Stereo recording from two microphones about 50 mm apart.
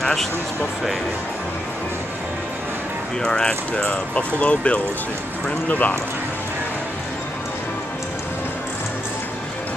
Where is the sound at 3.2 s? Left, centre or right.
Centre.